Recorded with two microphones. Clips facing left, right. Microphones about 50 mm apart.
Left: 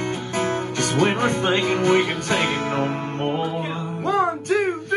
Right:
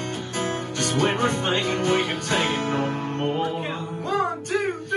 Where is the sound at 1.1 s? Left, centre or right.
Left.